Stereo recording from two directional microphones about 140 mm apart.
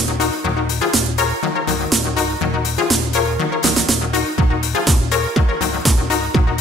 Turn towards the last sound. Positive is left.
turn(degrees=0)  # may be behind; listen again after turning